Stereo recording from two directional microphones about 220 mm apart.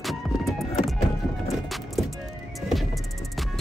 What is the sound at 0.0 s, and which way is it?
Music, centre (ahead or behind).